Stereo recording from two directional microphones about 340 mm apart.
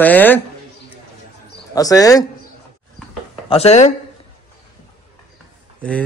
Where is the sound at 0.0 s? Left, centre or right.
Centre.